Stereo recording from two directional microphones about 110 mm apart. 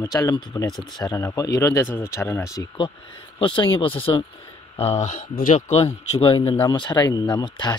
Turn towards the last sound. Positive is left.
turn(degrees=40)  # may be behind; listen again after turning